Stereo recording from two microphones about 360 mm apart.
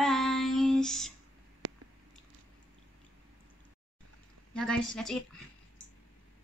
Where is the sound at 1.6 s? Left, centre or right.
Right.